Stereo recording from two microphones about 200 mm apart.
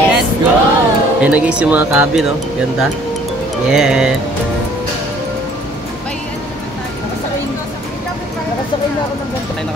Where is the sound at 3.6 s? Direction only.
5° right (ahead or behind).